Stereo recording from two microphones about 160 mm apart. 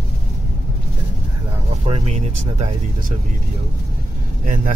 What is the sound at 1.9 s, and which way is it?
Speech, 40° right (ahead or behind).